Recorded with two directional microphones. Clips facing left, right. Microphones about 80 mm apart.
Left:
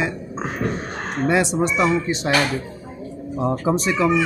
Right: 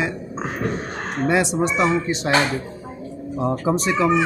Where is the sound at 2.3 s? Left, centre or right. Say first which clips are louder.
Right 1 dB; right.